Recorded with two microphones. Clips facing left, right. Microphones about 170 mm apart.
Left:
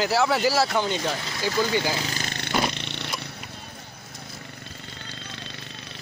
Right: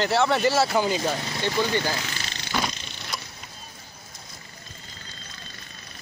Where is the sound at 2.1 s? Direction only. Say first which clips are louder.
Left 3 dB; 55° left (ahead or behind).